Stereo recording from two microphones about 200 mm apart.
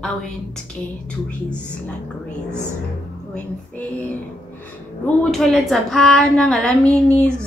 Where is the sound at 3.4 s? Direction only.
5° left (ahead or behind).